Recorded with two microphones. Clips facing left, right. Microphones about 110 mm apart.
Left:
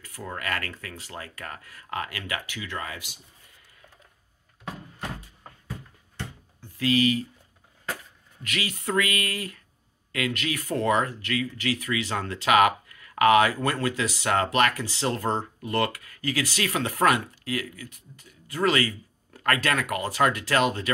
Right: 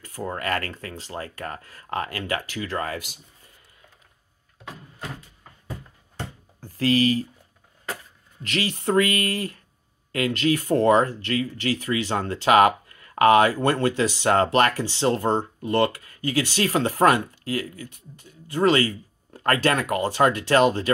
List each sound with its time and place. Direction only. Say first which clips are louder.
0.0 s speech: right 5 dB; 30° right (ahead or behind)
6.6 s speech: right 3 dB; 35° right (ahead or behind)
8.4 s speech: right 5 dB; 35° right (ahead or behind)